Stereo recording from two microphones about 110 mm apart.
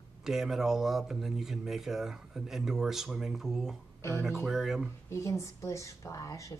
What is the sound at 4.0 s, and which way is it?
Speech, 25° left (ahead or behind).